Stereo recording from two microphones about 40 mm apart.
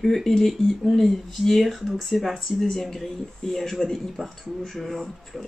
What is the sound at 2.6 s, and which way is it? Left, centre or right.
Speech, centre.